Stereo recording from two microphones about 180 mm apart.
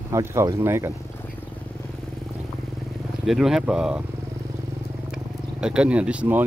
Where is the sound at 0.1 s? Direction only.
15° right (ahead or behind).